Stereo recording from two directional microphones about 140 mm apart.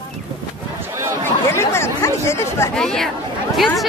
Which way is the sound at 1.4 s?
20° left (ahead or behind).